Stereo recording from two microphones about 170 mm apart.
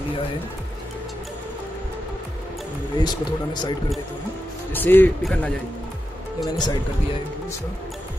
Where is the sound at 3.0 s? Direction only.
25° left (ahead or behind).